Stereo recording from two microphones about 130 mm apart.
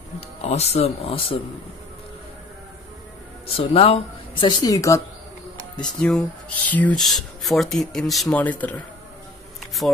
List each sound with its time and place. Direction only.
0.4 s speech: 55° left (ahead or behind)
3.5 s speech: 45° left (ahead or behind); by 5.0 s 25° left (ahead or behind)
5.8 s speech: 5° left (ahead or behind)
7.0 s speech: centre (ahead or behind)